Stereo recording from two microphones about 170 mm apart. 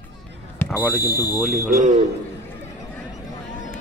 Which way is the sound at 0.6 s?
15° left (ahead or behind).